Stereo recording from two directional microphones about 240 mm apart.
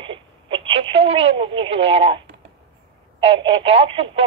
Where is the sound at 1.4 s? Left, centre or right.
Right.